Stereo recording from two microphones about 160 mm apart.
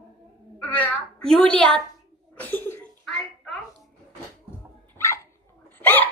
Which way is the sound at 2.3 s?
10° left (ahead or behind).